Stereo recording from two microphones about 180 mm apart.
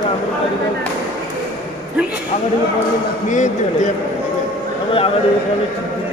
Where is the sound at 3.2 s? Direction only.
40° left (ahead or behind).